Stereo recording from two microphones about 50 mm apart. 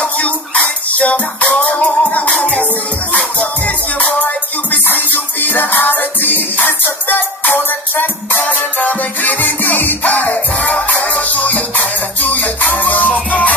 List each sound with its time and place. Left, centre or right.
0.0 s music: left
8.4 s music: left